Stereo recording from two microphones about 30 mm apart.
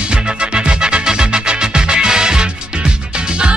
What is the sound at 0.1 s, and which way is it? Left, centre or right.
Music, right.